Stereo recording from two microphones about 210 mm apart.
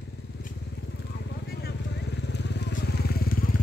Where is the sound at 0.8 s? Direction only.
55° left (ahead or behind).